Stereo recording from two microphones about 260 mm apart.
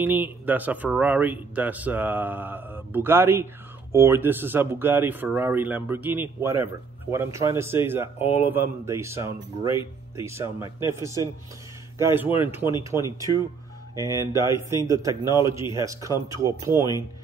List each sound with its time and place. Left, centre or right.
0.0 s speech: centre
16.7 s speech: centre